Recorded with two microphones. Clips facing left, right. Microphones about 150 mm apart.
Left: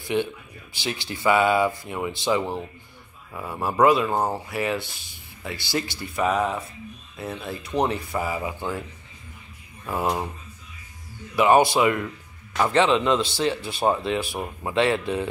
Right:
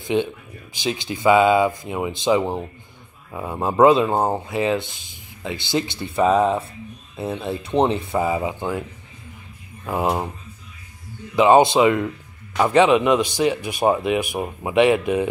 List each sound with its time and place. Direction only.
0.0 s speech: 20° right (ahead or behind)
9.8 s speech: 20° right (ahead or behind)
11.3 s a man's voice: 20° right (ahead or behind)